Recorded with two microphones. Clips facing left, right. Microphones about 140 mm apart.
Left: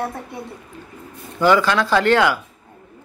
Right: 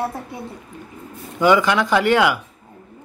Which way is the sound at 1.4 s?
15° right (ahead or behind).